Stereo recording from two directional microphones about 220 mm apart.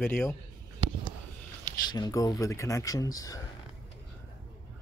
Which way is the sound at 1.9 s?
15° left (ahead or behind).